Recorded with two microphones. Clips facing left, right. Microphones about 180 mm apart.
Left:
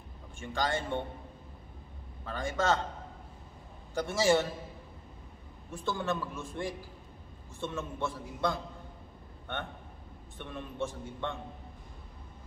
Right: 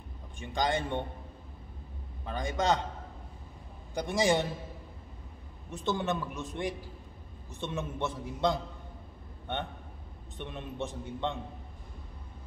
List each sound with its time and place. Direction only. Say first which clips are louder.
0.4 s a man's voice: right 2 dB; 15° right (ahead or behind)
2.2 s a man's voice: right 1 dB; 15° right (ahead or behind)
3.9 s a man's voice: left 1 dB; 15° right (ahead or behind)
5.7 s a man's voice: right 2 dB; 20° right (ahead or behind)
10.3 s a man's voice: right 2 dB; 20° right (ahead or behind)